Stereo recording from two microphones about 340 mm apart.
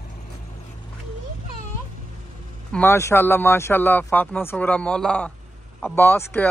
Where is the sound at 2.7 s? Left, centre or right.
Centre.